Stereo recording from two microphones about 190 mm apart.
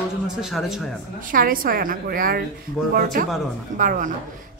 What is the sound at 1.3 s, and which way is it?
A woman's voice, 45° right (ahead or behind).